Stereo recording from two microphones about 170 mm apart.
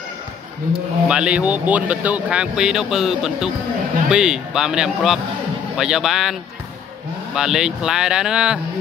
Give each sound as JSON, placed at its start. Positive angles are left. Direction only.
{"t": 0.7, "sound": "speech", "side_deg": -5}
{"t": 7.3, "sound": "speech", "side_deg": -5}